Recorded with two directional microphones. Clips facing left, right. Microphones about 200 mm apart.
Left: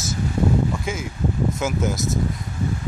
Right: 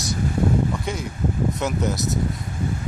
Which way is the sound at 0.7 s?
Centre (ahead or behind).